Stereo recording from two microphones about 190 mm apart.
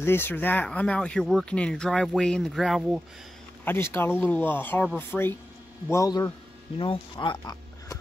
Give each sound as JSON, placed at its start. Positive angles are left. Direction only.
{"t": 0.0, "sound": "speech", "side_deg": 10}
{"t": 3.6, "sound": "speech", "side_deg": 10}